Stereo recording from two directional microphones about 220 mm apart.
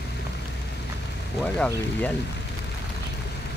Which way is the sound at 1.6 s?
5° left (ahead or behind).